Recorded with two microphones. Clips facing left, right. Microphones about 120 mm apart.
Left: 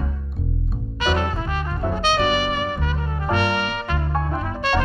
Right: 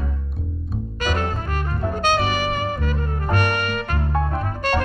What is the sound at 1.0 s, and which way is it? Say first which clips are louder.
Music: left 2 dB; 45° right (ahead or behind).